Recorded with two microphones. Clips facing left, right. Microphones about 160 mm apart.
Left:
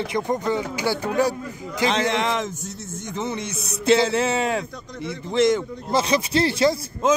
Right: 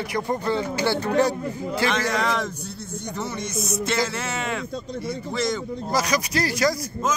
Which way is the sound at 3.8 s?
30° left (ahead or behind).